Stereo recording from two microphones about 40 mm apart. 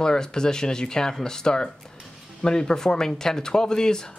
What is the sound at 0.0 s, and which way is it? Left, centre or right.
Speech, centre.